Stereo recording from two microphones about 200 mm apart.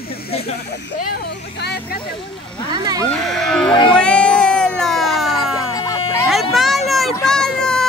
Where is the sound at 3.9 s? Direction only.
5° left (ahead or behind).